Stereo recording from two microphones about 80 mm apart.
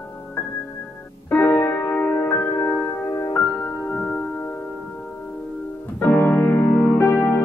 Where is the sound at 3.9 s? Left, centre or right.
Centre.